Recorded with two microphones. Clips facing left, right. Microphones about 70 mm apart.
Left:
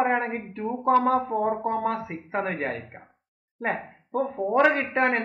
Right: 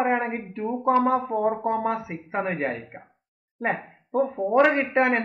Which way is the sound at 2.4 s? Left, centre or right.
Centre.